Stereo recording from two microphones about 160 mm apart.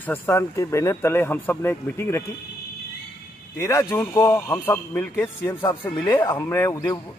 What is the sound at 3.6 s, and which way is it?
A man's voice, 15° left (ahead or behind).